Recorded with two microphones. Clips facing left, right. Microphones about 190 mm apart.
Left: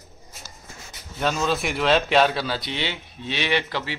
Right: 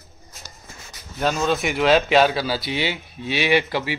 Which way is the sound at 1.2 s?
Centre (ahead or behind).